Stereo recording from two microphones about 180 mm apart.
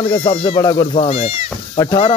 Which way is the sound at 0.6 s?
20° left (ahead or behind).